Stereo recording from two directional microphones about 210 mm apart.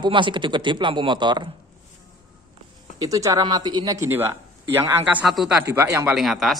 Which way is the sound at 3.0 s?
15° right (ahead or behind).